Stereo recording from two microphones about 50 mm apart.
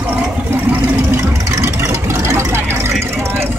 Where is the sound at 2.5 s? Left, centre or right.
Right.